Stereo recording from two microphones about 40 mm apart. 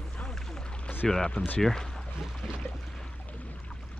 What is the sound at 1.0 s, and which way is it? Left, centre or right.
Speech, centre.